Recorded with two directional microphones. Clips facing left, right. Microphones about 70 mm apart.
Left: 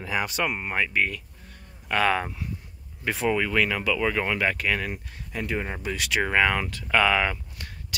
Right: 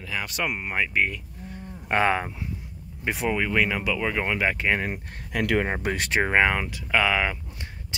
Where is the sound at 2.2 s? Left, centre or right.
Centre.